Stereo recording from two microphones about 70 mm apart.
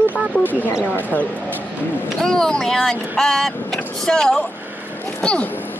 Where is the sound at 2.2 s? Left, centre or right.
Centre.